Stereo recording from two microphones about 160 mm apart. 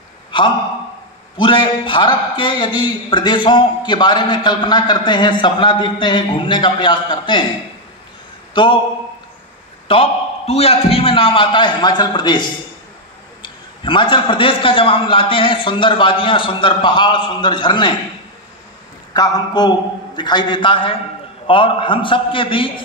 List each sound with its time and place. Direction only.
0.3 s a sound: 30° left (ahead or behind)
1.4 s a man's voice: 30° left (ahead or behind)
8.5 s speech: 30° left (ahead or behind)
9.8 s a man's voice: 35° left (ahead or behind)
19.1 s a man's voice: 25° left (ahead or behind)